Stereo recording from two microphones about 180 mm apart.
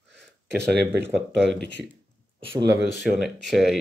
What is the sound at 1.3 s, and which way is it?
Speech, centre (ahead or behind).